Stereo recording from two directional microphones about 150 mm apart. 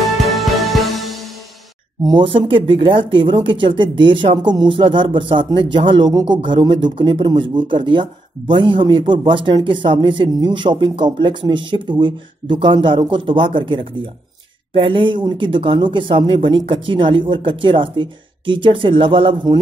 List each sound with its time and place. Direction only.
0.0 s music: centre (ahead or behind)
2.0 s speech: 35° right (ahead or behind)